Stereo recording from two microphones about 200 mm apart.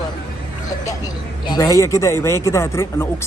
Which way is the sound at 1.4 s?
20° left (ahead or behind).